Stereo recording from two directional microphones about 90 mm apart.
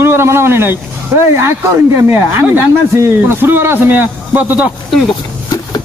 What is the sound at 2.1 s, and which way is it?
Speech, 25° right (ahead or behind).